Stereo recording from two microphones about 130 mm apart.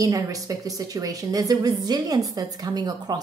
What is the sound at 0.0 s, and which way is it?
A woman's voice, 25° right (ahead or behind).